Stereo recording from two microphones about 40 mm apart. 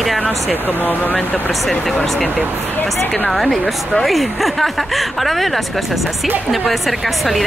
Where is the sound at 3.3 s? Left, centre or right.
Centre.